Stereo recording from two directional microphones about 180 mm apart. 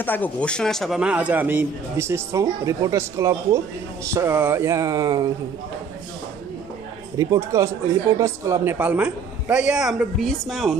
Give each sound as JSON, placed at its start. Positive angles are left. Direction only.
{"t": 0.0, "sound": "a man's voice", "side_deg": 10}
{"t": 7.2, "sound": "a man's voice", "side_deg": -15}